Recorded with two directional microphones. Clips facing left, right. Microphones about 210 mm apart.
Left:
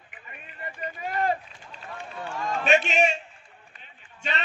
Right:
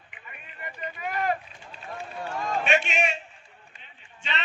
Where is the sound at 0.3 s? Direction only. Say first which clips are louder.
Left 2 dB; 35° left (ahead or behind).